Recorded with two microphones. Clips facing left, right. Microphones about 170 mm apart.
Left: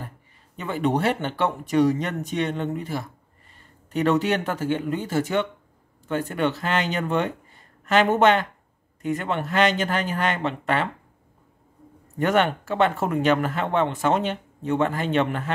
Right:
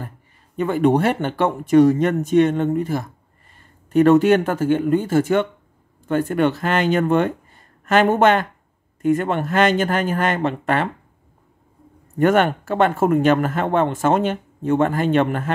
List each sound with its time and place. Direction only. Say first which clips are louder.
0.6 s speech: right 7 dB; 50° right (ahead or behind)
12.2 s speech: right 5 dB; 50° right (ahead or behind)